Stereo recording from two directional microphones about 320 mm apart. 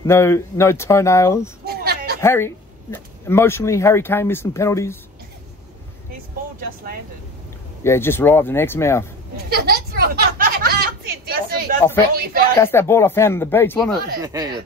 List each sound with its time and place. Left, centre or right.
0.0 s speech: centre
1.7 s a sound: right
2.2 s speech: centre
7.8 s speech: centre
9.5 s a sound: right
12.5 s speech: centre
14.2 s speech: centre